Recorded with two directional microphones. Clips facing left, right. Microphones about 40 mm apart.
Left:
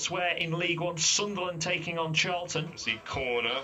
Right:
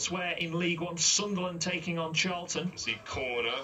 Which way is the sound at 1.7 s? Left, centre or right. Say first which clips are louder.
Left 2 dB; left.